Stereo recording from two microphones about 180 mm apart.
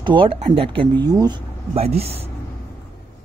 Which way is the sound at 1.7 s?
35° right (ahead or behind).